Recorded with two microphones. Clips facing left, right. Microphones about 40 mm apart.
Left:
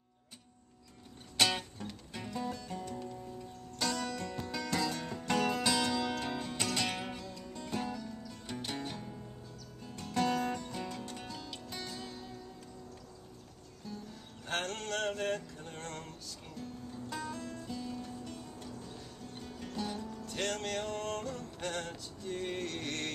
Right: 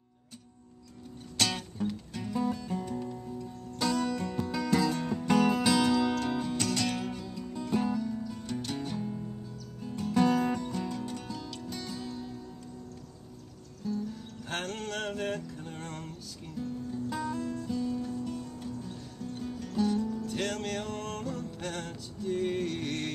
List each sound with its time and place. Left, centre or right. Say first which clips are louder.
1.4 s music: right 1 dB; centre
2.3 s music: right 8 dB; centre
7.2 s music: right 7 dB; centre
8.5 s music: right 3 dB; centre
13.8 s music: right 11 dB; centre